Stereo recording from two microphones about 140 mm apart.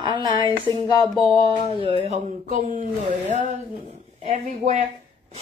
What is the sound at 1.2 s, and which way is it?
Speech, 40° right (ahead or behind).